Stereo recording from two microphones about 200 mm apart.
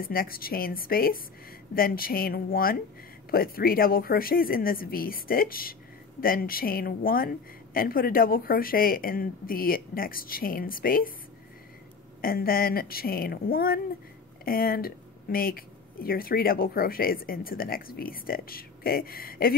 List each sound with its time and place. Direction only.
0.0 s speech: 45° left (ahead or behind)
12.2 s speech: 50° left (ahead or behind)